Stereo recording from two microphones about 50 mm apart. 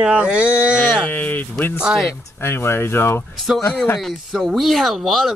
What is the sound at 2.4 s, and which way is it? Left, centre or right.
Speech, left.